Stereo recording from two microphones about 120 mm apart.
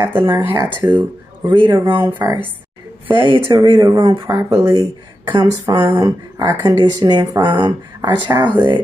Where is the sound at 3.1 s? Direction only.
40° right (ahead or behind).